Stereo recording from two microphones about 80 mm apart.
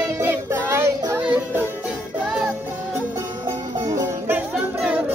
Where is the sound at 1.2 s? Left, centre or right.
Centre.